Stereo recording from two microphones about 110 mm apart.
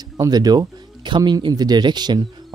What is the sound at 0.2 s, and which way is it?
Speech, 35° right (ahead or behind).